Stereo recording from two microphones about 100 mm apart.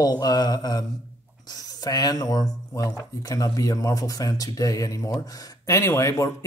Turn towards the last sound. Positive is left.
turn(degrees=30)  # may be behind; listen again after turning